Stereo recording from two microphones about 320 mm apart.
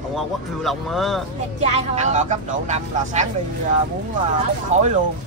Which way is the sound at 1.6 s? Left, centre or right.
Centre.